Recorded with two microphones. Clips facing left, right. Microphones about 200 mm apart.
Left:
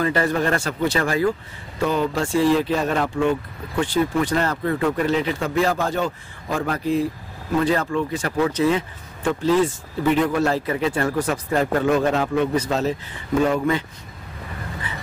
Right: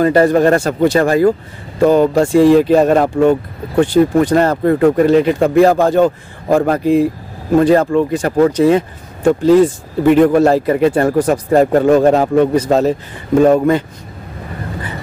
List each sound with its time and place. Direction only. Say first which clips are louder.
0.0 s speech: right 10 dB; 40° right (ahead or behind)